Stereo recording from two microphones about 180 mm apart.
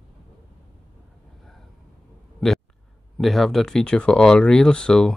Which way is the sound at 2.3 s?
Centre (ahead or behind).